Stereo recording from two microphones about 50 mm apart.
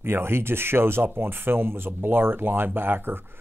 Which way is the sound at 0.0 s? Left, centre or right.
Right.